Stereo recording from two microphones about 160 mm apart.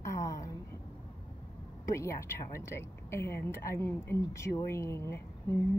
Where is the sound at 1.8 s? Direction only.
15° left (ahead or behind).